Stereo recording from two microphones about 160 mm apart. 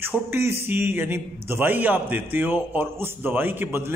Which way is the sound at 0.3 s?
15° right (ahead or behind).